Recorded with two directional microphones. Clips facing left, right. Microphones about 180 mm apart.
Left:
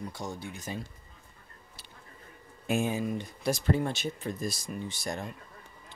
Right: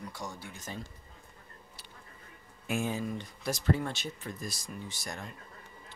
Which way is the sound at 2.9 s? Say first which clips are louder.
Left 3 dB; 10° left (ahead or behind).